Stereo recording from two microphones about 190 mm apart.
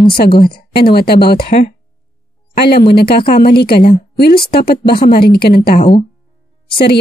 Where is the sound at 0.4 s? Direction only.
55° left (ahead or behind).